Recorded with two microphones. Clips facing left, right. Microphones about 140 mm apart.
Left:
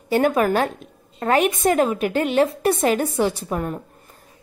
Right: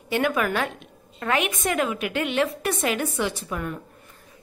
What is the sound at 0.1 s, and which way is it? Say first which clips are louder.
A woman's voice: left 6 dB; 40° left (ahead or behind).